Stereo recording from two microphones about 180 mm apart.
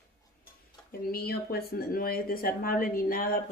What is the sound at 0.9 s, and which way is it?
Speech, 55° left (ahead or behind).